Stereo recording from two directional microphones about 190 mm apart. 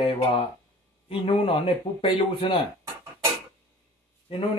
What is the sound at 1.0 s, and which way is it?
A man's voice, 30° left (ahead or behind).